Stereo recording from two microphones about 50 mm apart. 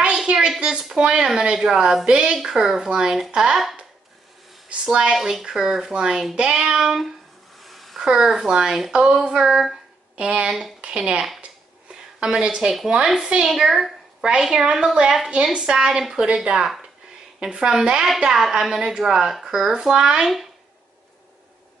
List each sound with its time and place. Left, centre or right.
0.0 s a sound: centre
0.6 s a woman's voice: centre
4.8 s a woman's voice: centre
7.6 s a sound: centre
8.0 s a woman's voice: centre
10.1 s speech: right
11.9 s a sound: centre
12.9 s a woman's voice: centre
16.5 s a woman's voice: centre